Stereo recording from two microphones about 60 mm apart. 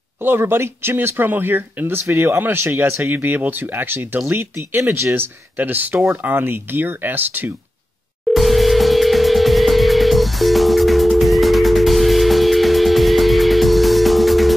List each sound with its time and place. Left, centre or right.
0.2 s speech: right
8.3 s music: centre